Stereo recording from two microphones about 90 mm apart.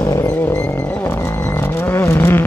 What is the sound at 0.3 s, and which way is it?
Wild animals, 15° left (ahead or behind).